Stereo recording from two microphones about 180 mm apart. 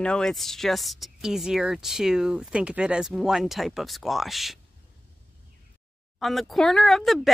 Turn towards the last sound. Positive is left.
turn(degrees=0)  # may be behind; listen again after turning